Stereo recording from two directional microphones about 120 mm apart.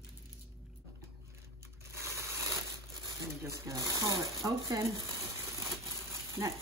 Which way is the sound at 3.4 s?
25° right (ahead or behind).